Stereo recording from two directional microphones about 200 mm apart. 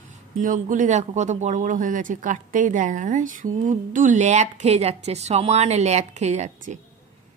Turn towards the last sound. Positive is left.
turn(degrees=-35)  # may be behind; listen again after turning